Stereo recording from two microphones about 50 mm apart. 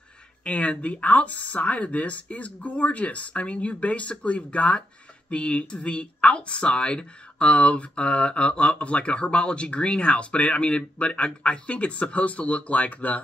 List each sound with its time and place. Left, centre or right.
0.4 s speech: left